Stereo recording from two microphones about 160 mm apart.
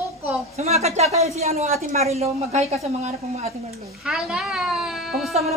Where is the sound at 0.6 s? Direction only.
40° right (ahead or behind).